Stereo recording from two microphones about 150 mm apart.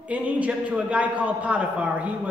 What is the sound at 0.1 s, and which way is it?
A man's voice, 10° right (ahead or behind).